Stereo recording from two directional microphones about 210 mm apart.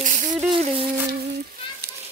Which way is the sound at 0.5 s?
25° right (ahead or behind).